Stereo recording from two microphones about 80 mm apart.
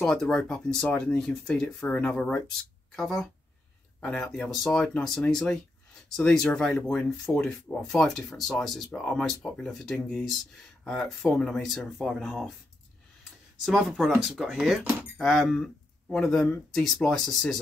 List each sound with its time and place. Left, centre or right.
0.0 s speech: centre
13.7 s speech: centre
14.8 s speech: right
15.1 s speech: centre